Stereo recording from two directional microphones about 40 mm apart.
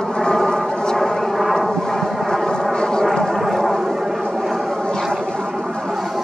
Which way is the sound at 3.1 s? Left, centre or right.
Centre.